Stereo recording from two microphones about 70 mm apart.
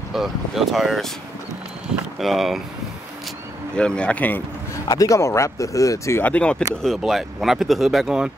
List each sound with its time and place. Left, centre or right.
0.1 s speech: centre
2.1 s speech: centre
3.7 s speech: centre
4.8 s speech: left
6.2 s speech: centre
7.0 s speech: centre